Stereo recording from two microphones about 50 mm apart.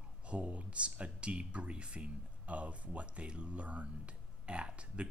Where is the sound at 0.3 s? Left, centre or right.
Right.